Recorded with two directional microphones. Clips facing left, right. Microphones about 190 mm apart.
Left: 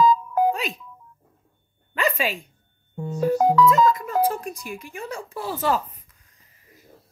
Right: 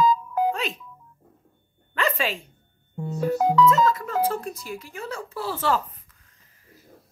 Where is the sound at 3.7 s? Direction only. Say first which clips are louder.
Left 2 dB; 15° left (ahead or behind).